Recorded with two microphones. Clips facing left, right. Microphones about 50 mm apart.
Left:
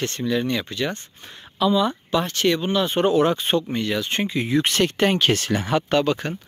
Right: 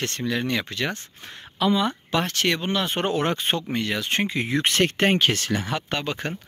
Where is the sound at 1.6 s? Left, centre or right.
Right.